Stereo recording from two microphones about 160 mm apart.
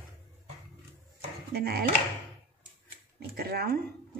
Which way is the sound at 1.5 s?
75° right (ahead or behind).